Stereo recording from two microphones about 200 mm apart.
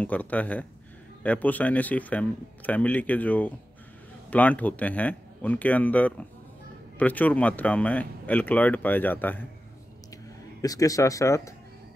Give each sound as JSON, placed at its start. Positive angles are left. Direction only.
{"t": 0.0, "sound": "speech", "side_deg": 5}
{"t": 10.6, "sound": "speech", "side_deg": 15}